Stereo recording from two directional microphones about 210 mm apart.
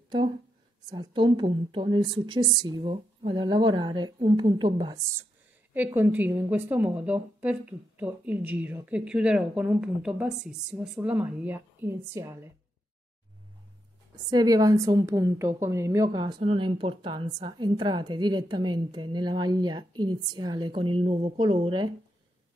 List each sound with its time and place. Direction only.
0.8 s a woman's voice: 20° right (ahead or behind)
14.3 s a woman's voice: 20° right (ahead or behind)